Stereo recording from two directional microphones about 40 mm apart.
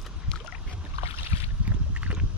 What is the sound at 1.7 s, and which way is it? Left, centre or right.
Horse, right.